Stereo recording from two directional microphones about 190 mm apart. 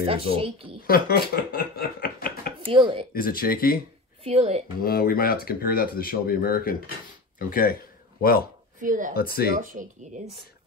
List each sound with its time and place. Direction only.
0.0 s speech: 30° right (ahead or behind)
0.8 s speech: 50° left (ahead or behind)
2.6 s speech: 30° right (ahead or behind)
3.1 s speech: 50° left (ahead or behind)
4.2 s speech: 30° right (ahead or behind)
4.8 s speech: 50° left (ahead or behind)
8.8 s speech: 45° right (ahead or behind)
9.1 s speech: 50° left (ahead or behind)
9.6 s speech: 45° right (ahead or behind)